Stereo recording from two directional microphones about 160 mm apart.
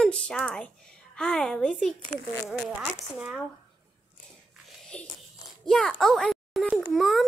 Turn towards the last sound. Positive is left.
turn(degrees=0)  # may be behind; listen again after turning